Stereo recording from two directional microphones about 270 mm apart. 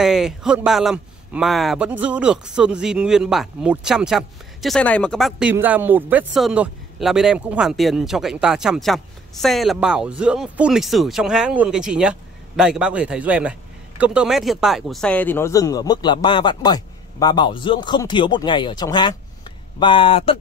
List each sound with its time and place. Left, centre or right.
0.0 s speech: centre